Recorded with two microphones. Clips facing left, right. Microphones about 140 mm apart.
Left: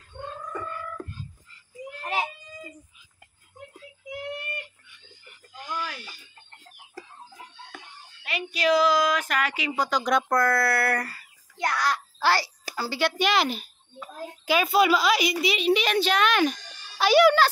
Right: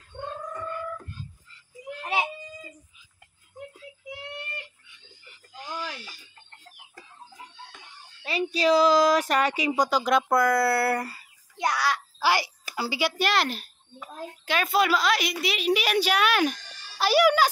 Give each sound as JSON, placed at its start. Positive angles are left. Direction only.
{"t": 5.7, "sound": "a sound", "side_deg": -25}
{"t": 8.2, "sound": "speech", "side_deg": -35}
{"t": 9.7, "sound": "speech", "side_deg": -10}
{"t": 11.1, "sound": "babbling", "side_deg": -15}
{"t": 12.7, "sound": "a child's voice", "side_deg": -15}